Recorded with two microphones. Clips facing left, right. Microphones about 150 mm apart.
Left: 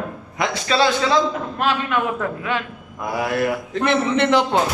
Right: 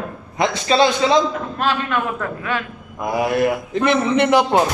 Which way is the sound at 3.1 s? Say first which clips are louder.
Right 3 dB; 20° right (ahead or behind).